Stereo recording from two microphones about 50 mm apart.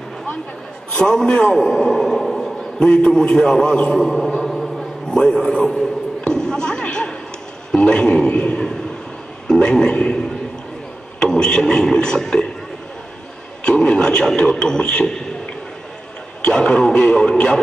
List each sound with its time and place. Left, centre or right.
0.9 s a man's voice: centre
4.4 s a sound: centre
5.1 s a man's voice: centre
6.2 s a sound: centre
7.7 s a man's voice: centre
13.7 s a man's voice: centre
16.4 s a man's voice: centre